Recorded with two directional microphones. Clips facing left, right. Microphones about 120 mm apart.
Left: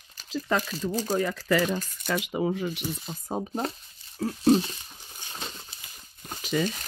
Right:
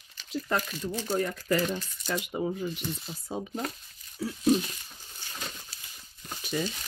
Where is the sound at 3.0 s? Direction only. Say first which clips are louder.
Left 4 dB; 50° left (ahead or behind).